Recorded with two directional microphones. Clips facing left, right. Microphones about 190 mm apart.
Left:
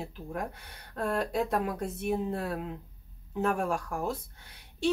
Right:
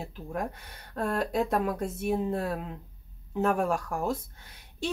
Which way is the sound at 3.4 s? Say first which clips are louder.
Right 3 dB; 40° right (ahead or behind).